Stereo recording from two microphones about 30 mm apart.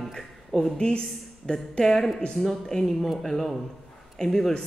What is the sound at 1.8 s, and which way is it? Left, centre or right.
Speech, centre.